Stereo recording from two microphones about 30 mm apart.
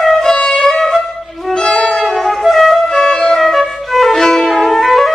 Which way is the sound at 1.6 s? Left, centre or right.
Centre.